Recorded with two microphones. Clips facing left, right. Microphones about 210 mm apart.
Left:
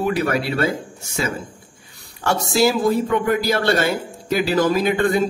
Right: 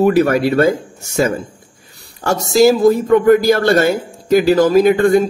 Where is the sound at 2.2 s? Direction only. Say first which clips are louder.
Right 6 dB; 40° right (ahead or behind).